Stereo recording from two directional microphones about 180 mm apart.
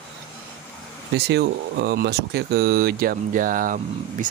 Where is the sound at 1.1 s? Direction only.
70° right (ahead or behind).